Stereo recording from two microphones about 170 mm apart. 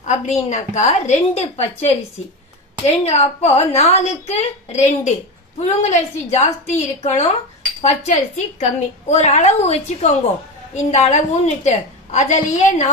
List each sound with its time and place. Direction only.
0.0 s a woman's voice: 45° left (ahead or behind)
3.1 s a woman's voice: 40° left (ahead or behind)